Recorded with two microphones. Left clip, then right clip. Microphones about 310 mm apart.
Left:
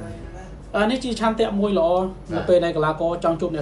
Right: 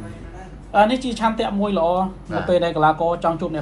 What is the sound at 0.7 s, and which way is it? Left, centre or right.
Speech, centre.